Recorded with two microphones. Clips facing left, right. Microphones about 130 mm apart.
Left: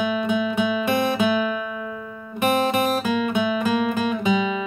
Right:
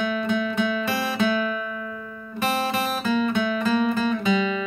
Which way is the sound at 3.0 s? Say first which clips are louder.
Left 1 dB; 15° left (ahead or behind).